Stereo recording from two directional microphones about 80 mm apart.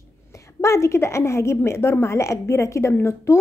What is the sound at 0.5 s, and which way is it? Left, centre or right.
A woman's voice, left.